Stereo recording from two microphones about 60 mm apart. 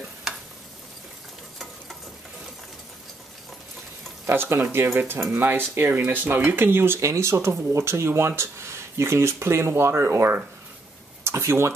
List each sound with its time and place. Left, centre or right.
4.3 s speech: right